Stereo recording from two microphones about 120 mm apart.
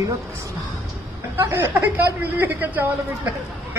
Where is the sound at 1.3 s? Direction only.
20° right (ahead or behind).